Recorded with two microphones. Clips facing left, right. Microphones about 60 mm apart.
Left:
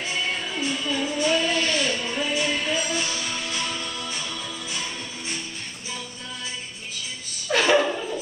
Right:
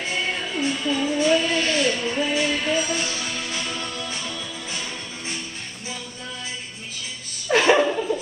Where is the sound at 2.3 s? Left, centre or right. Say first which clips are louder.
Right 1 dB; right.